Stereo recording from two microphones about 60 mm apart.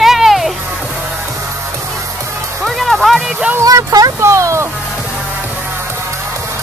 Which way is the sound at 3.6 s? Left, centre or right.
Right.